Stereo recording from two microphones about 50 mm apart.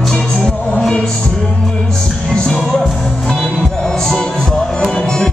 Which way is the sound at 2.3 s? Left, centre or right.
Centre.